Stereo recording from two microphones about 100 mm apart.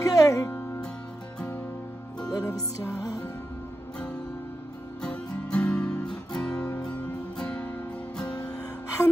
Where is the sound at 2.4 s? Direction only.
30° left (ahead or behind).